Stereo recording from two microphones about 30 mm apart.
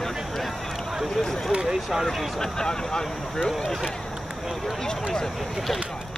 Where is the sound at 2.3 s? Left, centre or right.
Centre.